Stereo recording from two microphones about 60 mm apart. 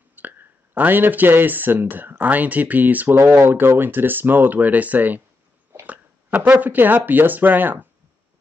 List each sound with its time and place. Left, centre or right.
0.1 s speech: right
3.2 s speech: right
6.5 s speech: right